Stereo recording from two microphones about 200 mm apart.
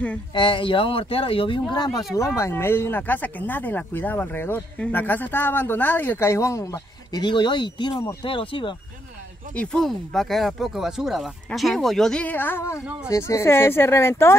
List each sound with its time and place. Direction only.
0.3 s speech: 25° left (ahead or behind)
9.6 s speech: 5° left (ahead or behind)